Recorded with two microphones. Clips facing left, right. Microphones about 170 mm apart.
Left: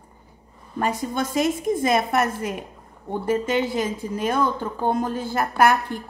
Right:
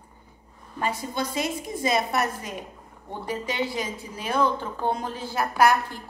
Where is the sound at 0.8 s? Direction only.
45° left (ahead or behind).